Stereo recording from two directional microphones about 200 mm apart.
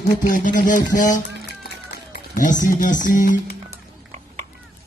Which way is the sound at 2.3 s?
40° left (ahead or behind).